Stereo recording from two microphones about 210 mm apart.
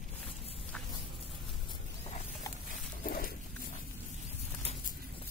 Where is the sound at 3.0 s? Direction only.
45° left (ahead or behind).